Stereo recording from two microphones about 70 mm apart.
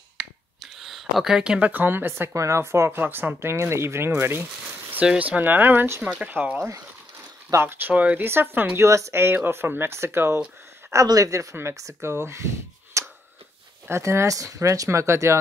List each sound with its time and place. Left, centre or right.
0.2 s finger snapping: centre
1.6 s speech: right
2.3 s speech: right
3.0 s speech: right
5.2 s speech: right
6.0 s speech: right
7.9 s speech: centre
8.2 s speech: right
8.8 s speech: right
11.1 s speech: right
11.5 s speech: right
13.0 s a sound: right
13.8 s speech: right